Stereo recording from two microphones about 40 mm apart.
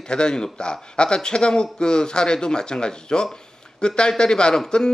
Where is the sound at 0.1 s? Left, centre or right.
Left.